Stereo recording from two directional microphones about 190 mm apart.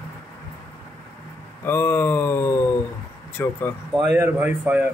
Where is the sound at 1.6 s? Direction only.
10° left (ahead or behind).